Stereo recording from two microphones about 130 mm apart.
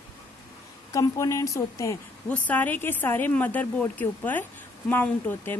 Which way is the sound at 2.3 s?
10° left (ahead or behind).